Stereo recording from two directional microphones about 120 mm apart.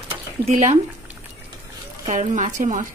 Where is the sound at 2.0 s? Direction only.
80° right.